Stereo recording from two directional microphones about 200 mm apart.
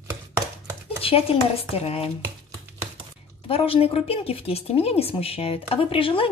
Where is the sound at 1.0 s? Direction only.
30° left (ahead or behind).